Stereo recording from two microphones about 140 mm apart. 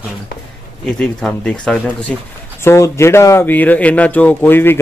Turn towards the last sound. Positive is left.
turn(degrees=15)  # may be behind; listen again after turning